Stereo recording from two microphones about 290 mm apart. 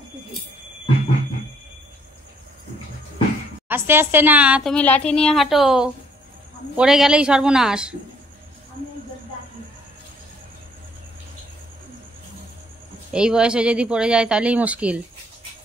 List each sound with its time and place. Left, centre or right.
3.6 s a woman's voice: centre
13.1 s a woman's voice: centre